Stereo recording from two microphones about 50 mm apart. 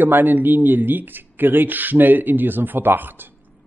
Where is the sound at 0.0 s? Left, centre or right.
Right.